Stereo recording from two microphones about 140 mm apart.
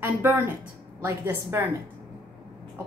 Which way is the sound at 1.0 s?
15° right (ahead or behind).